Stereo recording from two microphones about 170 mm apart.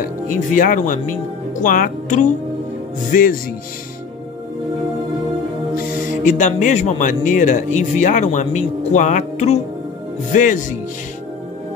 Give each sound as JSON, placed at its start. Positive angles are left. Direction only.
{"t": 0.0, "sound": "speech", "side_deg": 50}
{"t": 6.2, "sound": "speech", "side_deg": 45}